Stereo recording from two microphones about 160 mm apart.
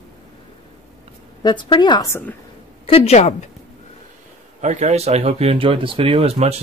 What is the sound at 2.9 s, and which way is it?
Speech, 40° left (ahead or behind).